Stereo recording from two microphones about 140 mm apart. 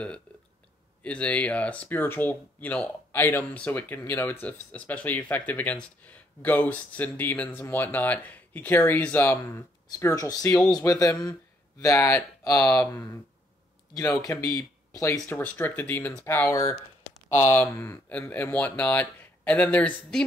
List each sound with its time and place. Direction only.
1.0 s speech: 10° left (ahead or behind)
12.6 s speech: 10° left (ahead or behind)
12.9 s speech: 20° left (ahead or behind)